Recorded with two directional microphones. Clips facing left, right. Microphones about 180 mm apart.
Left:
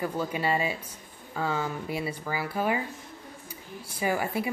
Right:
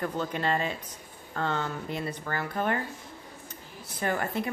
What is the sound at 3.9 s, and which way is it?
Speech, 5° left (ahead or behind).